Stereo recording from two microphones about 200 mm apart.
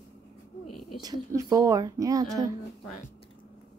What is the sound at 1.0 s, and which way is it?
Speech, 15° right (ahead or behind).